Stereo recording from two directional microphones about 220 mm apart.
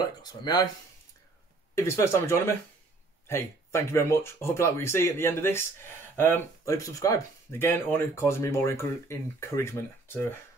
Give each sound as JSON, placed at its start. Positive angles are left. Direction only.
{"t": 0.2, "sound": "speech", "side_deg": 20}
{"t": 1.8, "sound": "speech", "side_deg": 10}